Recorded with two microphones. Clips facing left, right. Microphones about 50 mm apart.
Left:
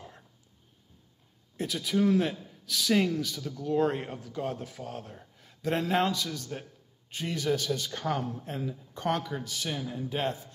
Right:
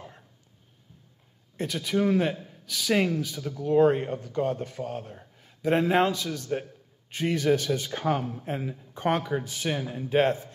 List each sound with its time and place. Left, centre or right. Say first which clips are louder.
1.6 s speech: right 1 dB; centre
2.3 s a sound: right 2 dB; right
2.6 s speech: left 2 dB; centre
2.9 s speech: right 2 dB; right
5.9 s speech: right 4 dB; right
7.1 s speech: right 6 dB; right